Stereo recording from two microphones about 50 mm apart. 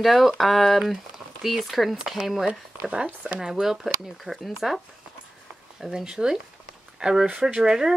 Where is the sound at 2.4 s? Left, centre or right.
Centre.